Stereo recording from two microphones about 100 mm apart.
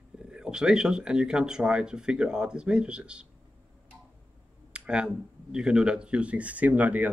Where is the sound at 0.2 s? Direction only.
10° right (ahead or behind).